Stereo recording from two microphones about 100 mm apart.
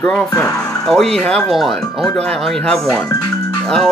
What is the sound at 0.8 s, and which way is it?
Speech, 5° left (ahead or behind).